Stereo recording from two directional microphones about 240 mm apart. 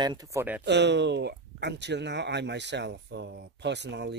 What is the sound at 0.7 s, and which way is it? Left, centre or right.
Speech, right.